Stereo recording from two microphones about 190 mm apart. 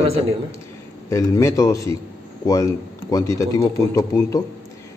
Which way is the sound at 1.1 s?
15° left (ahead or behind).